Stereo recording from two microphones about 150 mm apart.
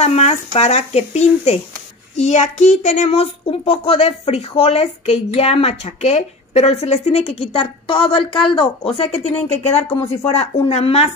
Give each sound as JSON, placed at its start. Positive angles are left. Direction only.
{"t": 0.0, "sound": "a child's voice", "side_deg": 45}